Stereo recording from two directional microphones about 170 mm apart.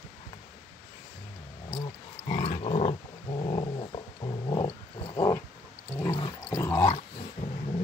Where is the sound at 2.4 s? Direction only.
40° left (ahead or behind).